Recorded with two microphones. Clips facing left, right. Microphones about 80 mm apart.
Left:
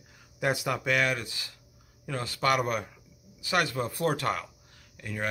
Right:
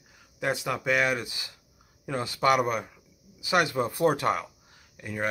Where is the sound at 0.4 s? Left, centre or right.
Centre.